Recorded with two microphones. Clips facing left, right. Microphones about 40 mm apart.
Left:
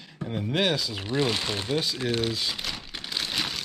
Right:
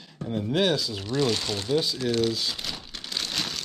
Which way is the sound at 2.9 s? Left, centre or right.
Centre.